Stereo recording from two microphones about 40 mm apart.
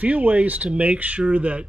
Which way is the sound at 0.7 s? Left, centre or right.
Right.